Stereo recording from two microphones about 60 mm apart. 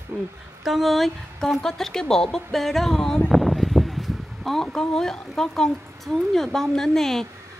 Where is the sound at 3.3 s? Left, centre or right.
Centre.